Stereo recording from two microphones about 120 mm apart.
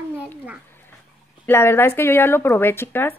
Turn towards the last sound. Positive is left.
turn(degrees=20)  # may be behind; listen again after turning